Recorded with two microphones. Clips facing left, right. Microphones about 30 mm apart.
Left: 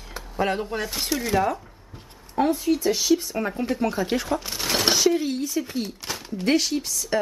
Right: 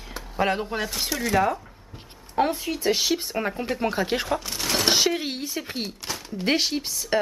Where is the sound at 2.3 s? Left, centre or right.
Right.